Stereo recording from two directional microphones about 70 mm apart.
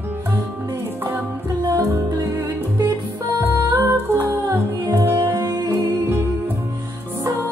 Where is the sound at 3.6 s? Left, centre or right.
Right.